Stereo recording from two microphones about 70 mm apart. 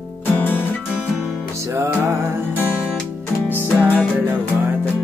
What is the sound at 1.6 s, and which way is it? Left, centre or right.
Music, right.